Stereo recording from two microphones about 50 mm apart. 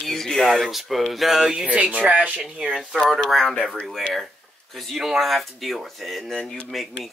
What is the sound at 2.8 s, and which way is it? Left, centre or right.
Speech, centre.